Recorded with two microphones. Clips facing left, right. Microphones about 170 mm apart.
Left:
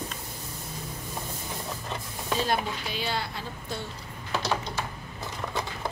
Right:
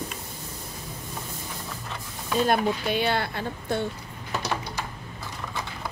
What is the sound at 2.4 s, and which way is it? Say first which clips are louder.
A woman's voice: right 6 dB; 60° right (ahead or behind).